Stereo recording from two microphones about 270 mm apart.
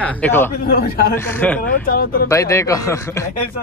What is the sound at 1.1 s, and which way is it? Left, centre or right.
Speech, centre.